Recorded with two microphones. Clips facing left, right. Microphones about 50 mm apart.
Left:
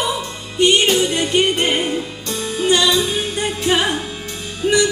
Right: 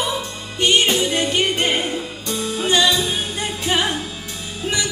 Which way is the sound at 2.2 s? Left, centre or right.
Centre.